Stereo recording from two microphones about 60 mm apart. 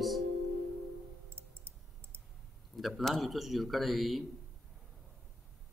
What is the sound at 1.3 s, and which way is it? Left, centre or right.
Clicking, right.